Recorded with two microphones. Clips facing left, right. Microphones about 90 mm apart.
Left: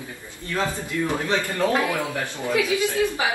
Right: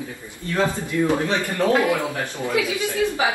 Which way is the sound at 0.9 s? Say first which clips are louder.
Right 1 dB; 20° right (ahead or behind).